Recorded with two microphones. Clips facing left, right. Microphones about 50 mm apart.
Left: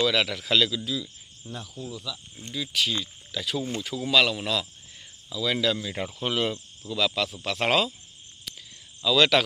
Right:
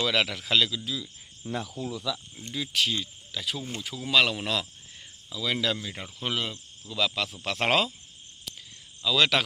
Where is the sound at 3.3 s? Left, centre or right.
Centre.